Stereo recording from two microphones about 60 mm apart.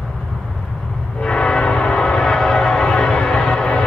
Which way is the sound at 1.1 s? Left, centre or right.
Centre.